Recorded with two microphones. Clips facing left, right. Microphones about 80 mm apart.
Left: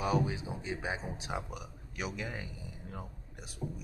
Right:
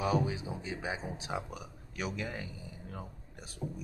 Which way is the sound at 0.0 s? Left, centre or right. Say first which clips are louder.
Even; right.